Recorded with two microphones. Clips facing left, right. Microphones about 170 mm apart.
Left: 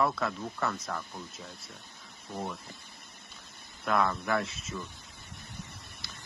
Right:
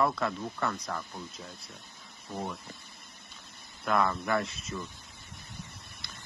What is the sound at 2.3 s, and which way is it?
Speech, centre (ahead or behind).